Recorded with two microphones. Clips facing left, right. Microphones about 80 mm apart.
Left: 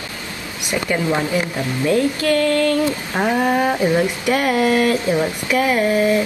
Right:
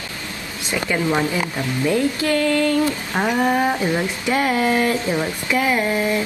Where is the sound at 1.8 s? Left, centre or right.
Right.